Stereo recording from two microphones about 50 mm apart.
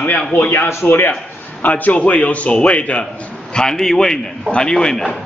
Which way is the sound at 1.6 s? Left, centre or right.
Left.